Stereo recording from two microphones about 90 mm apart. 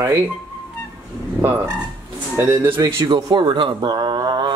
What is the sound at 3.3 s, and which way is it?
Speech, 60° right (ahead or behind).